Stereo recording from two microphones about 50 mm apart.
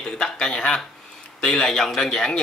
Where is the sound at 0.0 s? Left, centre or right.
Centre.